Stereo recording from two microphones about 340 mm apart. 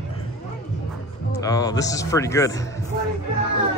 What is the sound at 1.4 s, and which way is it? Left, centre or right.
Speech, centre.